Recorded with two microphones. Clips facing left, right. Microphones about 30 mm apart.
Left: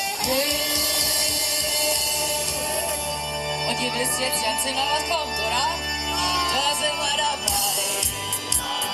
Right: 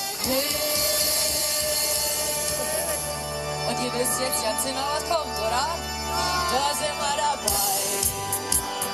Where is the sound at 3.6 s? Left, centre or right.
Left.